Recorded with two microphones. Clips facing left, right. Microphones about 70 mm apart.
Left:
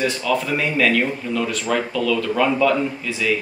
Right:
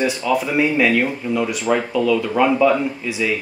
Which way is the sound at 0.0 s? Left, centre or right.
Centre.